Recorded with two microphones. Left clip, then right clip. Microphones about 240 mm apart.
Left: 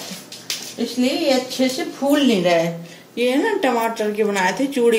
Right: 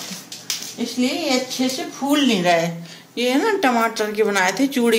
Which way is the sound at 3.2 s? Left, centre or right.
Right.